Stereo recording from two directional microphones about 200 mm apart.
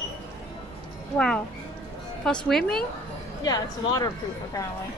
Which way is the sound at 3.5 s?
20° left (ahead or behind).